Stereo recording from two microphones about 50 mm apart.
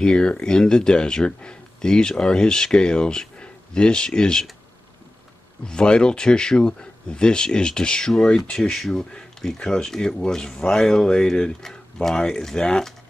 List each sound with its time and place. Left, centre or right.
0.0 s speech: centre
5.7 s speech: centre
8.5 s speech: centre